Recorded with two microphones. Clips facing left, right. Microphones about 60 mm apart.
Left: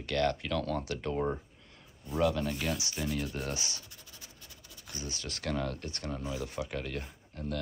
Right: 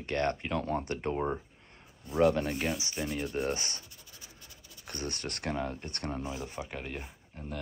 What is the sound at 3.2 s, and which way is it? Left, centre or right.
Speech, right.